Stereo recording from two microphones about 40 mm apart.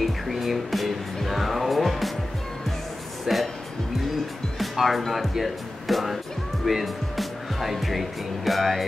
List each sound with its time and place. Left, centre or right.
0.0 s music: centre
3.3 s music: centre
4.6 s speech: centre